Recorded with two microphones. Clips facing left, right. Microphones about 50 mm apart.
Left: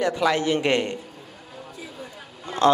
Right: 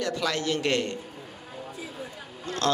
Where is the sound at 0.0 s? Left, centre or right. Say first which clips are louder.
Left 6 dB; centre.